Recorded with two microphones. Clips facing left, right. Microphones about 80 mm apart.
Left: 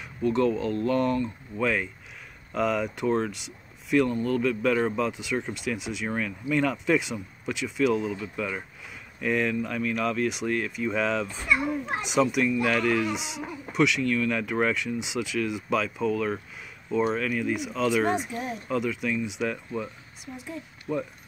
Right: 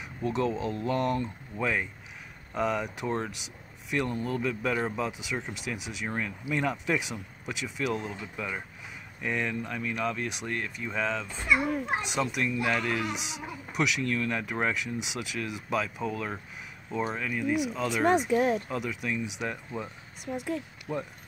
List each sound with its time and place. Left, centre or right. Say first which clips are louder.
0.0 s a man's voice: left 5 dB; centre
18.3 s speech: right 8 dB; right
18.7 s a man's voice: left 5 dB; centre
20.9 s speech: left 4 dB; centre